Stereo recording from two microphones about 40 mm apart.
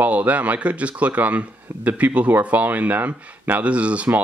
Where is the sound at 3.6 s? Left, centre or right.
Right.